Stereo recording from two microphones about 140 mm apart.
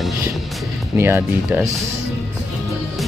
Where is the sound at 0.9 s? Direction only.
15° right (ahead or behind).